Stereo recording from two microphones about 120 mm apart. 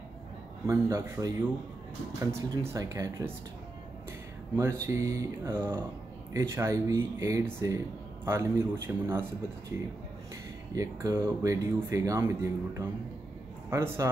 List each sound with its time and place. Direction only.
0.7 s speech: 25° right (ahead or behind)
4.6 s speech: 25° right (ahead or behind)
10.7 s a man's voice: 25° right (ahead or behind)